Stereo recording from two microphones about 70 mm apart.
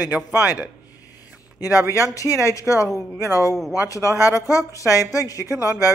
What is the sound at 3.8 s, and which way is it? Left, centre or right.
Speech, left.